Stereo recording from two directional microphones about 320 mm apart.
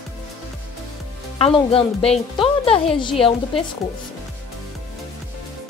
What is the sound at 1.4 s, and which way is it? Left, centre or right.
Speech, centre.